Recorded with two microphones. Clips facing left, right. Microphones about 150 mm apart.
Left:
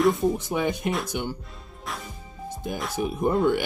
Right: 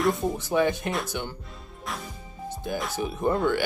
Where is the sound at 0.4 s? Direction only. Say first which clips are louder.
Right 2 dB; 15° left (ahead or behind).